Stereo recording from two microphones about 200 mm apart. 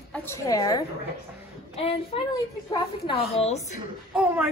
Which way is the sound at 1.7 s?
30° left (ahead or behind).